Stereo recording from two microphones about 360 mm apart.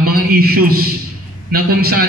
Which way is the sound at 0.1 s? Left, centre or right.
Right.